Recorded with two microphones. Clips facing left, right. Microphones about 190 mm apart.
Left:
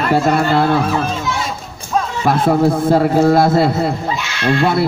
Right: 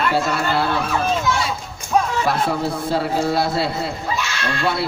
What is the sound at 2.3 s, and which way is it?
A man's voice, 50° left (ahead or behind).